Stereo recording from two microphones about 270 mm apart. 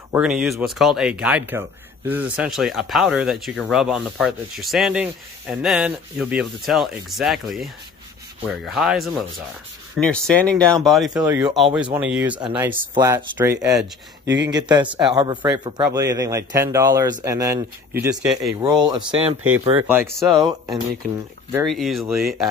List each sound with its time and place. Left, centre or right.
0.1 s speech: centre
18.6 s speech: centre